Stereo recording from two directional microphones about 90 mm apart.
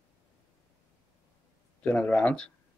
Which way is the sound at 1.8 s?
15° left (ahead or behind).